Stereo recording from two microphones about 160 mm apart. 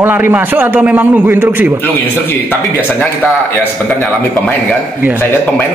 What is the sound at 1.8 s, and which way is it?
A man's voice, 10° left (ahead or behind).